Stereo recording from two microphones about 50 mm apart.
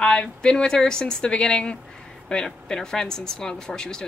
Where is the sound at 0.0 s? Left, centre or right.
Centre.